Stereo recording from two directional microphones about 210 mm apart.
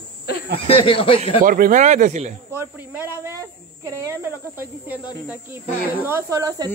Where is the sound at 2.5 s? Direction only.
10° right (ahead or behind).